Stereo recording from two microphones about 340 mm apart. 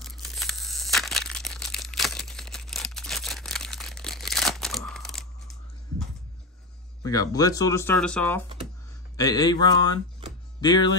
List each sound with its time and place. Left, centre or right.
0.0 s tearing: centre
7.0 s speech: centre